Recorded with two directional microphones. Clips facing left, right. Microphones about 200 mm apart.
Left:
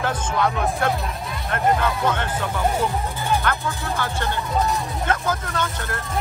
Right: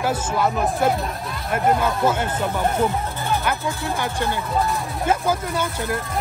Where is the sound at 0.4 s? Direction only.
5° right (ahead or behind).